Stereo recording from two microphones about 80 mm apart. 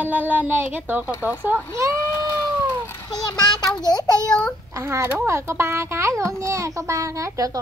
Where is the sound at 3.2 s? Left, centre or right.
Left.